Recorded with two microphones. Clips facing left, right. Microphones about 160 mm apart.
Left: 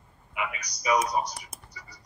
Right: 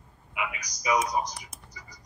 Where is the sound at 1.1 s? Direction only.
10° right (ahead or behind).